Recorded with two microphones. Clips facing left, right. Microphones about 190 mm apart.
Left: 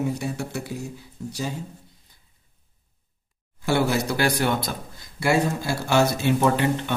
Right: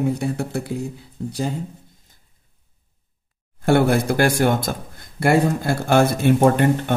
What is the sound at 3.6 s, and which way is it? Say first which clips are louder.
Speech: right 6 dB; 55° right (ahead or behind).